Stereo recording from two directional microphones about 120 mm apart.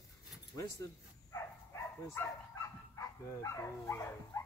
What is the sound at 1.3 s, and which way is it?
Dog, 25° left (ahead or behind).